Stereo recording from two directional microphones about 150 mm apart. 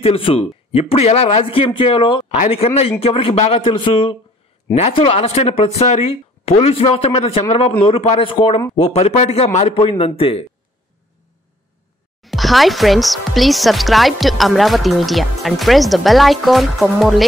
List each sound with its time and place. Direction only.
0.0 s speech: 40° left (ahead or behind)
12.2 s speech: centre (ahead or behind)